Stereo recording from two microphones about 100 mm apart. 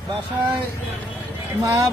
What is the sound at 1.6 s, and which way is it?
Speech, 35° right (ahead or behind).